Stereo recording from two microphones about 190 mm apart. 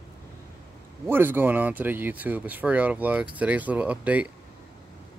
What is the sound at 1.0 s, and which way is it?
Speech, 10° right (ahead or behind).